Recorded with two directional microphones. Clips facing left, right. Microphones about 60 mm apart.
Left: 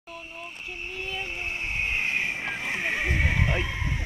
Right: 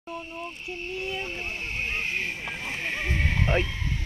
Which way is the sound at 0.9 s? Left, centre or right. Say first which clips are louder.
Right 1 dB; centre.